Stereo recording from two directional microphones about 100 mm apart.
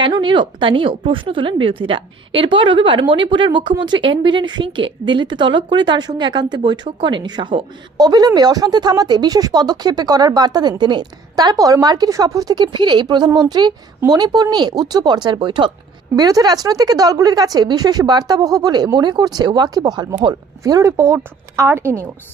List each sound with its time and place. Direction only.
0.0 s speech: 50° right (ahead or behind)
16.2 s a woman's voice: 40° right (ahead or behind)
20.6 s a woman's voice: 35° right (ahead or behind)